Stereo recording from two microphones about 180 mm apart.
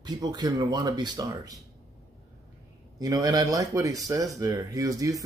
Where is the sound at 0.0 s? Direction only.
25° right (ahead or behind).